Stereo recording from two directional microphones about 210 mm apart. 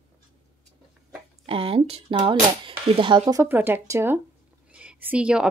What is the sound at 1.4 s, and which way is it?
A woman's voice, 25° right (ahead or behind).